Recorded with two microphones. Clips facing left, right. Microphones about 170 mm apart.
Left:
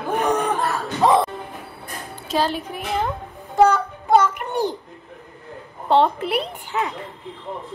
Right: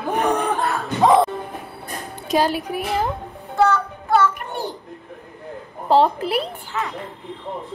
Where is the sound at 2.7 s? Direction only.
Centre (ahead or behind).